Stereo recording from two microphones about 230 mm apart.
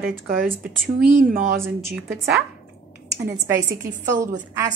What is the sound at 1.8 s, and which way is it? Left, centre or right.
Speech, centre.